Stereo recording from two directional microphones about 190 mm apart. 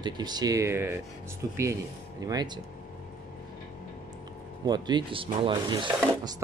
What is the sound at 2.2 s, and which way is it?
Speech, 20° right (ahead or behind).